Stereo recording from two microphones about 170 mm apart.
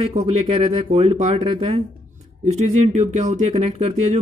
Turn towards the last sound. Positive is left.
turn(degrees=-40)  # may be behind; listen again after turning